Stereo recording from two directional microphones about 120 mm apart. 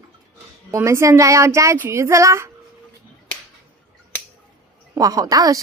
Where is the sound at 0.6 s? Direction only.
25° right (ahead or behind).